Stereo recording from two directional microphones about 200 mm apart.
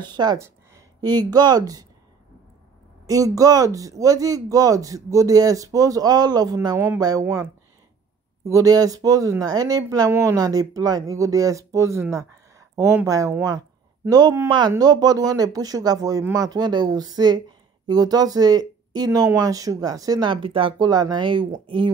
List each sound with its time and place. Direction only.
0.1 s speech: 20° right (ahead or behind)
3.1 s speech: 15° right (ahead or behind)
8.5 s speech: 15° right (ahead or behind)